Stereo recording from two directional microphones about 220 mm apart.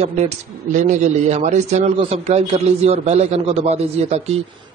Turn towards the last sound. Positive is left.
turn(degrees=-30)  # may be behind; listen again after turning